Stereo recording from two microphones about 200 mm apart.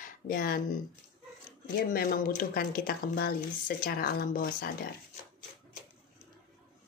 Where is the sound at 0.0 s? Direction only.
45° left (ahead or behind).